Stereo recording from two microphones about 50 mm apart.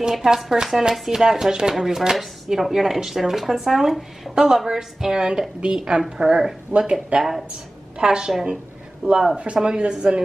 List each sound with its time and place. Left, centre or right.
0.0 s speech: centre
2.1 s speech: centre
6.9 s speech: right